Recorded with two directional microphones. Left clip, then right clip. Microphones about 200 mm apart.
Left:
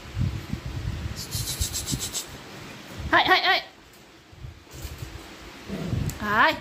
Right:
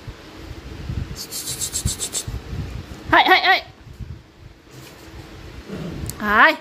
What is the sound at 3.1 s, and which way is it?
Goat, 25° right (ahead or behind).